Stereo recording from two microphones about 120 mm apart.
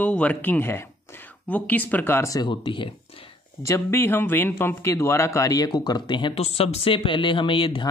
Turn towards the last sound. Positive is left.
turn(degrees=45)  # may be behind; listen again after turning